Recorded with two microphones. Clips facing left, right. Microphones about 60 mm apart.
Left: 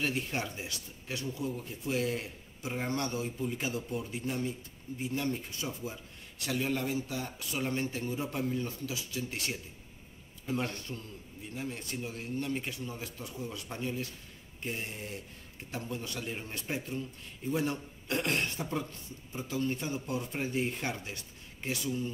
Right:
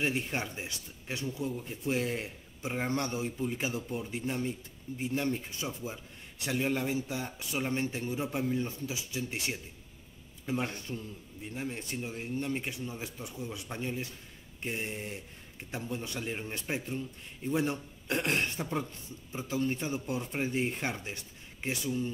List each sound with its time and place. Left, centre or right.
0.0 s speech: right